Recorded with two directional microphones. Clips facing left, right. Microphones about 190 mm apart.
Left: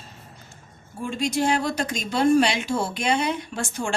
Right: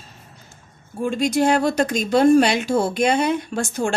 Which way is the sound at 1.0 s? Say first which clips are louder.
Right 5 dB; 50° right (ahead or behind).